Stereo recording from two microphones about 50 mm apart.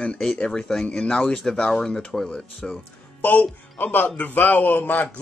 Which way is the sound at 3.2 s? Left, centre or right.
Left.